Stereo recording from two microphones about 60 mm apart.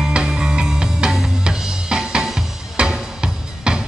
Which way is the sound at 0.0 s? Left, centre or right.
Centre.